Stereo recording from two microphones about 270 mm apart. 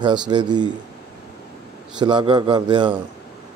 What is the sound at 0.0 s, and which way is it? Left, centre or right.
Speech, centre.